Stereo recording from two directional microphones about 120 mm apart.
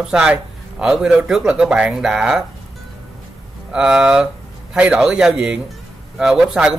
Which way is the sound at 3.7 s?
5° right (ahead or behind).